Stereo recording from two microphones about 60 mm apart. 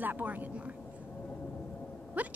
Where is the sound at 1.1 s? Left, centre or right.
Left.